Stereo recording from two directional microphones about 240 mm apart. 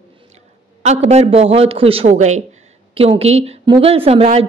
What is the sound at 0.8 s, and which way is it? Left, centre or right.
A woman's voice, right.